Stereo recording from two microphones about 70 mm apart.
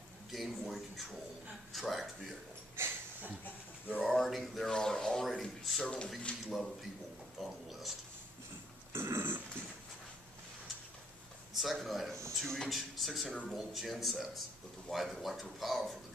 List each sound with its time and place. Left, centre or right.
0.3 s a man's voice: centre
2.7 s a sound: right
4.1 s a man's voice: centre
8.9 s dog: right
11.5 s a man's voice: centre